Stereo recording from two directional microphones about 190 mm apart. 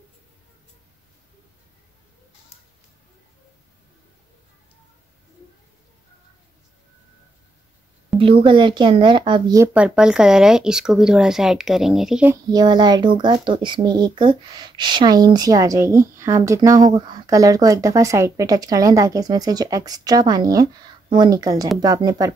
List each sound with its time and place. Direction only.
8.2 s speech: 25° right (ahead or behind)
9.8 s speech: 5° right (ahead or behind)
12.4 s speech: 20° right (ahead or behind)